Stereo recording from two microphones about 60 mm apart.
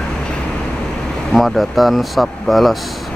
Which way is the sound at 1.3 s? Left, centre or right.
Centre.